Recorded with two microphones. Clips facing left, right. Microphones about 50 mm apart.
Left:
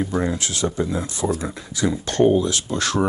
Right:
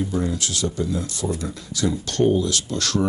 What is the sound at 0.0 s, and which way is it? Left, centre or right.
Speech, left.